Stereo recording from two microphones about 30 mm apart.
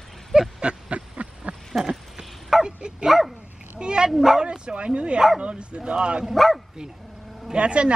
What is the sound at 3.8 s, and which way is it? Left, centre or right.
Speech, right.